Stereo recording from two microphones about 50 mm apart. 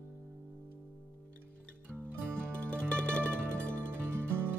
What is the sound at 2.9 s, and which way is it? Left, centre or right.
Music, left.